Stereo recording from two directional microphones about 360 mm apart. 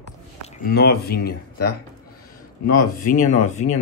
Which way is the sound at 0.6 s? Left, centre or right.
Left.